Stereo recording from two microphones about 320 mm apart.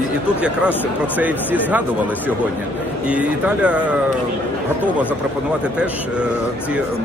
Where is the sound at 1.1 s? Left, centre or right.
Centre.